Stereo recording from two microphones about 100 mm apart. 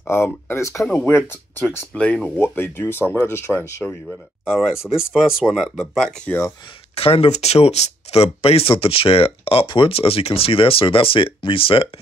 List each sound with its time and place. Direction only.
0.0 s speech: 25° left (ahead or behind)
4.5 s speech: 5° right (ahead or behind)
6.1 s speech: 15° left (ahead or behind)
7.0 s speech: 85° left; by 11.9 s 65° left (ahead or behind)